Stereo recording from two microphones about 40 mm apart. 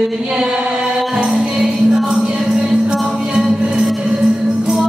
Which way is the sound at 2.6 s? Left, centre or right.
Right.